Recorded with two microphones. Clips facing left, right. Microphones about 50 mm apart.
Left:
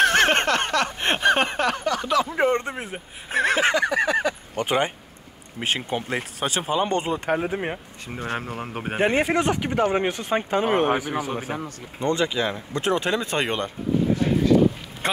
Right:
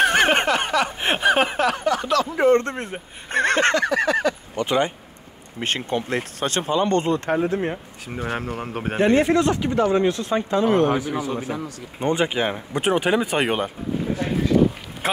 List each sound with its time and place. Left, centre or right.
0.0 s a sound: centre
2.3 s speech: centre
2.7 s speech: centre
4.6 s speech: left
5.6 s speech: centre
8.3 s speech: centre
9.0 s speech: centre; by 11.7 s left
12.0 s speech: centre
12.3 s speech: right; by 13.7 s centre